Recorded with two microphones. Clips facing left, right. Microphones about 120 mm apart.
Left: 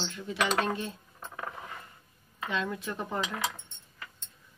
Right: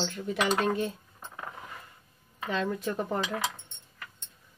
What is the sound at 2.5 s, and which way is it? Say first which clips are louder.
Speech: right 3 dB; 40° right (ahead or behind).